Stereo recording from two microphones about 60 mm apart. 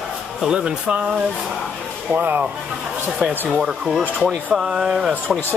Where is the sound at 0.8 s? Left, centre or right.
Right.